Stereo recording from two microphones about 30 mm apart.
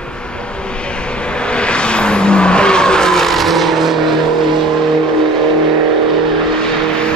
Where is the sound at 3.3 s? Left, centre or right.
Centre.